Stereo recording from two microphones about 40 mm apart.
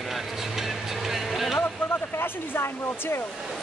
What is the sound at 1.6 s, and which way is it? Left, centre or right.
Speech, left.